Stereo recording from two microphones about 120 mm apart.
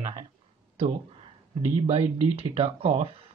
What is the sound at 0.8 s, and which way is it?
Speech, 55° right (ahead or behind).